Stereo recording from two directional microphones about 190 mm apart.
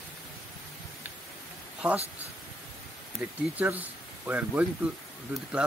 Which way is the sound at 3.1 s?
10° right (ahead or behind).